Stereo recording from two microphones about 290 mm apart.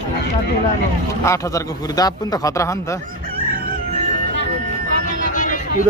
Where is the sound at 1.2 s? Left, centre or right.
Centre.